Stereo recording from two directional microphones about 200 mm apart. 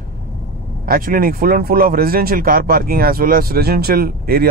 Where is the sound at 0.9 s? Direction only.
45° right (ahead or behind).